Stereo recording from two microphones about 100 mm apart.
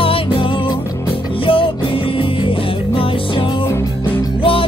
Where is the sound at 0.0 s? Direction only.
65° left (ahead or behind).